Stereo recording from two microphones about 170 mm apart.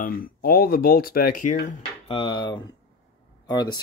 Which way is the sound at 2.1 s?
25° left (ahead or behind).